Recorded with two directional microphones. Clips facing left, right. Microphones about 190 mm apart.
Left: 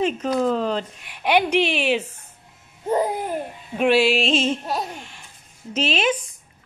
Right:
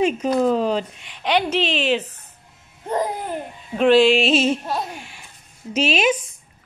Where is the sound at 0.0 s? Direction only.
15° right (ahead or behind).